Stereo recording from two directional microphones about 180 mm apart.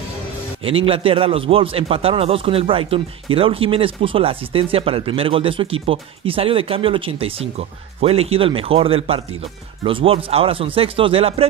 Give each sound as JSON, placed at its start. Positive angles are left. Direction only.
{"t": 0.8, "sound": "a man's voice", "side_deg": -30}